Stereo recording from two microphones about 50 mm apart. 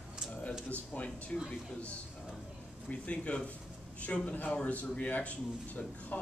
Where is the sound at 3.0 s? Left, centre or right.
Left.